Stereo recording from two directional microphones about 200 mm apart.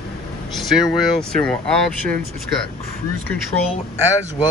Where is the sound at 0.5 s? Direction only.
Centre (ahead or behind).